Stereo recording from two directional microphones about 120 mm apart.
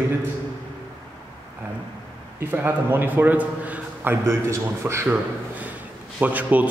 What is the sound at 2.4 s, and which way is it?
A man's voice, 20° right (ahead or behind).